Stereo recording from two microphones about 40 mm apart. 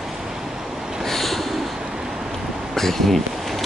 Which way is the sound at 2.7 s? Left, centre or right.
Centre.